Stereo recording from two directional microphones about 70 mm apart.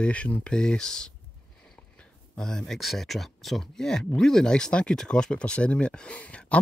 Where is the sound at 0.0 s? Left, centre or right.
Centre.